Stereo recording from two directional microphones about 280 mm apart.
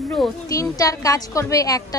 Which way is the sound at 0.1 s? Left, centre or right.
Centre.